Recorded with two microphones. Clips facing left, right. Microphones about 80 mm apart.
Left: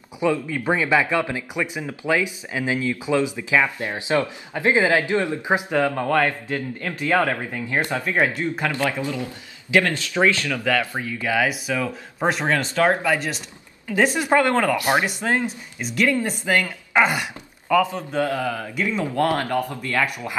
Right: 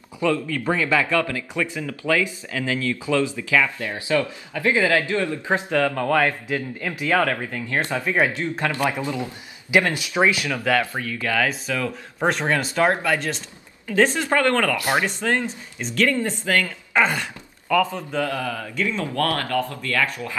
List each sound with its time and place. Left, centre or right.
0.2 s speech: centre
6.0 s a man's voice: centre
7.2 s a man's voice: centre
8.7 s speech: centre
10.9 s speech: centre
13.0 s a man's voice: centre; by 20.3 s left